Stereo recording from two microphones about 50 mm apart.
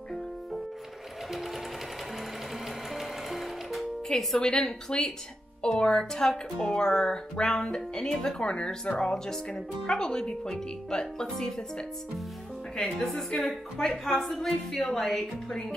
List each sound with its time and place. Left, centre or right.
2.9 s music: centre
4.1 s speech: centre
4.4 s speech: centre
12.7 s speech: centre